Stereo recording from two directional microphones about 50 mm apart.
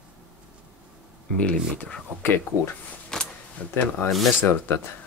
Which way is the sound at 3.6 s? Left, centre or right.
Left.